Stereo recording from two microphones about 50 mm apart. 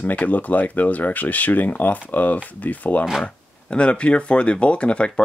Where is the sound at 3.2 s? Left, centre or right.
Left.